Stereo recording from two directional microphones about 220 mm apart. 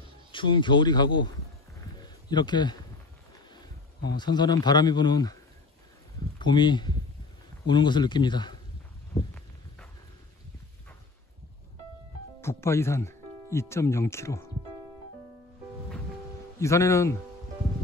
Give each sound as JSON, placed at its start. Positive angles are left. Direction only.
{"t": 0.3, "sound": "speech", "side_deg": 20}
{"t": 4.2, "sound": "speech", "side_deg": 20}
{"t": 6.4, "sound": "speech", "side_deg": 20}
{"t": 12.4, "sound": "speech", "side_deg": 10}
{"t": 16.5, "sound": "a man's voice", "side_deg": 15}